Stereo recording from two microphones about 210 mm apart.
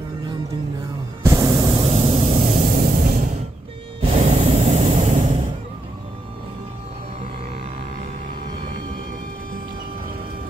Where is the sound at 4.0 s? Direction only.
35° right (ahead or behind).